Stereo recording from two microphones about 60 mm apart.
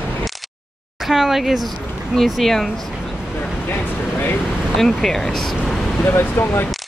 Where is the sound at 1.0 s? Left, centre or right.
Centre.